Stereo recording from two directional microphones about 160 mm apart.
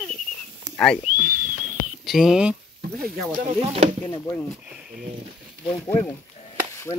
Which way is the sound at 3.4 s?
45° right (ahead or behind).